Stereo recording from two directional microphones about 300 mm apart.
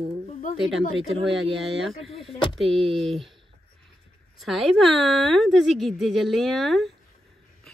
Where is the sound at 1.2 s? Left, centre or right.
Centre.